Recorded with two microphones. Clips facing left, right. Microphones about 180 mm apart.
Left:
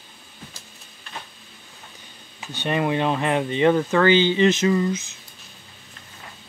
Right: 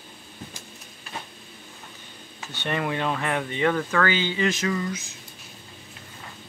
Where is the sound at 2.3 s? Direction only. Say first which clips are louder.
Left 4 dB; 15° left (ahead or behind).